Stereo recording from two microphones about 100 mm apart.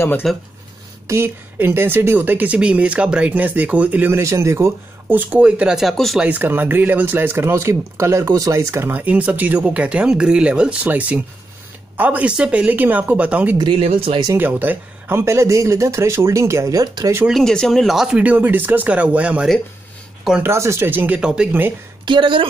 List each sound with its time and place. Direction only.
0.2 s speech: centre (ahead or behind)
1.0 s a man's voice: 25° right (ahead or behind)
4.1 s a man's voice: 30° right (ahead or behind); by 6.2 s centre (ahead or behind)
6.2 s a man's voice: 20° right (ahead or behind)
13.7 s speech: 75° right (ahead or behind)
14.3 s speech: 20° right (ahead or behind)
16.8 s speech: 45° right (ahead or behind)
17.3 s a man's voice: 5° left (ahead or behind); by 19.4 s 10° right (ahead or behind)
20.4 s speech: 25° right (ahead or behind)
21.2 s a man's voice: 10° right (ahead or behind)
22.0 s a woman's voice: 55° right (ahead or behind)